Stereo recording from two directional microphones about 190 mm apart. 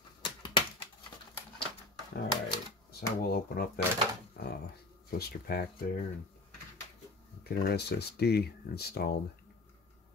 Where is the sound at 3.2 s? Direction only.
55° left (ahead or behind).